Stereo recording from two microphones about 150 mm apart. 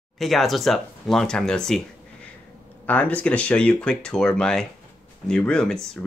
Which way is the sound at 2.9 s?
10° left (ahead or behind).